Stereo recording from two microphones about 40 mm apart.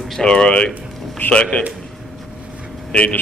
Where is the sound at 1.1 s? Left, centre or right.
Left.